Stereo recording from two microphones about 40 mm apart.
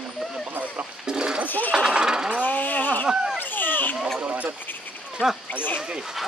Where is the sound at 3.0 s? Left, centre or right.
Centre.